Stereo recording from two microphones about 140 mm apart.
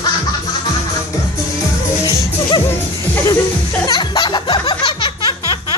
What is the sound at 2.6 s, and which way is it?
Music, 15° left (ahead or behind).